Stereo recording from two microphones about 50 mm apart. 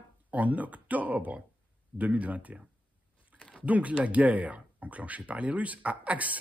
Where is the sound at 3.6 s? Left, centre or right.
Right.